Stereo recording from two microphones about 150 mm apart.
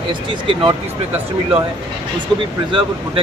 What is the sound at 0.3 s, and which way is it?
Speech, 35° right (ahead or behind).